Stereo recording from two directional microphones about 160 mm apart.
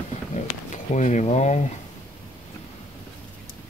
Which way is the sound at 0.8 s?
50° left (ahead or behind).